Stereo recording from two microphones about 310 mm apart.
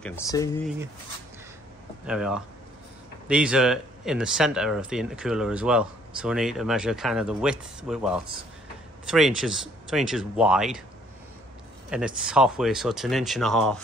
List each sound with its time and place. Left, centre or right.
0.0 s speech: centre
2.0 s speech: centre
12.2 s speech: centre